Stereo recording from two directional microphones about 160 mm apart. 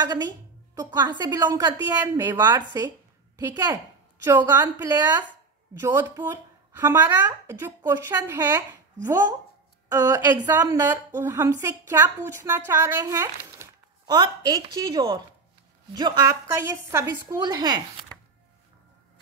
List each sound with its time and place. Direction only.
0.8 s a woman's voice: 25° right (ahead or behind)
14.1 s speech: 25° right (ahead or behind)